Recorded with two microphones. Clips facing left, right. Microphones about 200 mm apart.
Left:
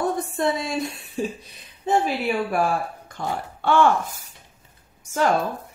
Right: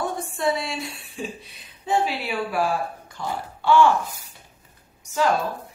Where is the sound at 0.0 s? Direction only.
40° left (ahead or behind).